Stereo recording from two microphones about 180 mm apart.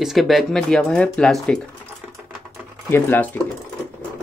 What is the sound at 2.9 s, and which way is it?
Speech, 10° left (ahead or behind).